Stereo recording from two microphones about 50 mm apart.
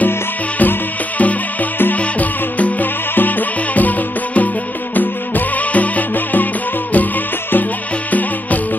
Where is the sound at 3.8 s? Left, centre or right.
Left.